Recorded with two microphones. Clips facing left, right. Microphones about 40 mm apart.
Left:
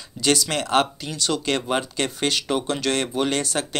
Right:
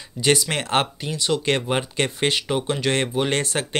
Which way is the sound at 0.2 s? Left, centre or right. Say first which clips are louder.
Right 1 dB; right.